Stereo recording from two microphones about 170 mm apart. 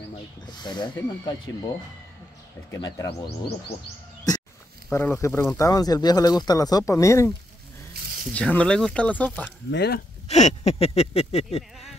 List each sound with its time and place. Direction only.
0.5 s speech: 25° left (ahead or behind)
2.7 s speech: 20° left (ahead or behind)
4.9 s speech: 15° left (ahead or behind)
7.9 s snake: 65° right (ahead or behind)
8.3 s speech: 10° left (ahead or behind)
9.7 s speech: 75° left (ahead or behind)
10.2 s speech: 40° left (ahead or behind)